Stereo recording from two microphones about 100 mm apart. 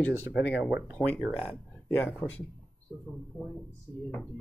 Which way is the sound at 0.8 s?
10° left (ahead or behind).